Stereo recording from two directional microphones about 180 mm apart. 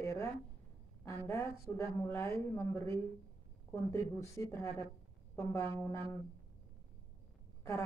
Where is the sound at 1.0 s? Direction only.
15° left (ahead or behind).